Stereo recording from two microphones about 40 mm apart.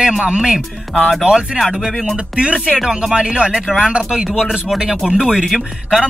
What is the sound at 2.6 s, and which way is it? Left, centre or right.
Speech, centre.